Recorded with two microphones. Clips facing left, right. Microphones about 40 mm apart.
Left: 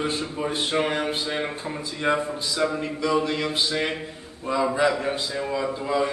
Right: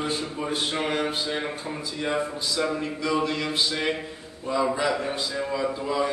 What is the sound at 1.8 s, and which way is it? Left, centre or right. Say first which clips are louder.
Speech: left 3 dB; left.